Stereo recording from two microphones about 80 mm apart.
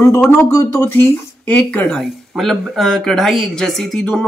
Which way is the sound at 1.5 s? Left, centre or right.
Centre.